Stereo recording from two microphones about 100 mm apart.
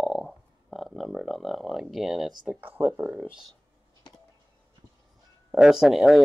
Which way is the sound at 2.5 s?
20° right (ahead or behind).